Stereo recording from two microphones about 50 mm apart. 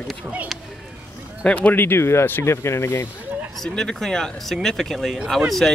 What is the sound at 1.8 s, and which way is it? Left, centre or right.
Speech, left.